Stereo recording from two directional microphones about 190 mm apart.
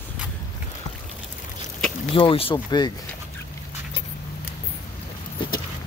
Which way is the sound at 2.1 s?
25° left (ahead or behind).